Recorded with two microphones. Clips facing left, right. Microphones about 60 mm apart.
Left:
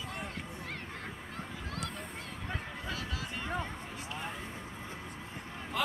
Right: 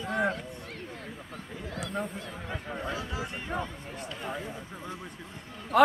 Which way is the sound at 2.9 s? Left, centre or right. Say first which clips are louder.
Right 4 dB; right.